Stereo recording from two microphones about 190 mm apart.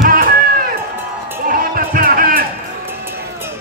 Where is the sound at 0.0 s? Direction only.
45° right (ahead or behind).